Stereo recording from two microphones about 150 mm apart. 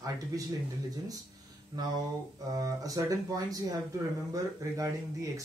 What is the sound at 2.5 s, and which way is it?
Speech, 25° right (ahead or behind).